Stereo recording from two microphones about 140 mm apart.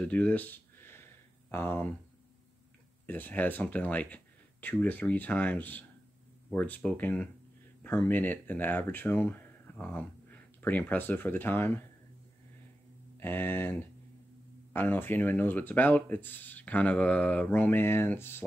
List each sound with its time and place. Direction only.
0.0 s a sound: 10° left (ahead or behind)
1.5 s speech: 15° left (ahead or behind)
3.1 s speech: 10° left (ahead or behind)
13.2 s speech: 15° left (ahead or behind)